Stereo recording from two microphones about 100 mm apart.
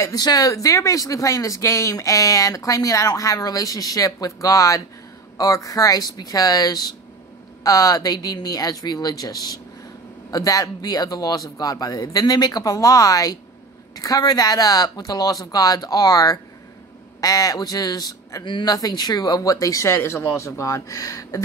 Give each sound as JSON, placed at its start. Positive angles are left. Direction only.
{"t": 0.1, "sound": "speech", "side_deg": 40}